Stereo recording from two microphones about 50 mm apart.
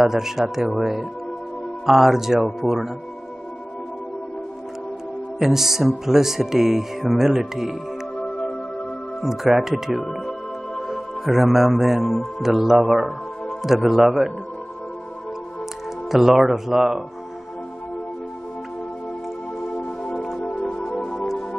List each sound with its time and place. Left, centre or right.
0.0 s speech: centre
5.4 s speech: centre
8.2 s music: left
9.2 s a man's voice: centre
16.1 s speech: centre
20.7 s music: centre